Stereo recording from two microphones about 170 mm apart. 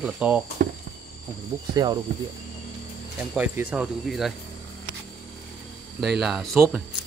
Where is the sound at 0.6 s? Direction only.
60° right (ahead or behind).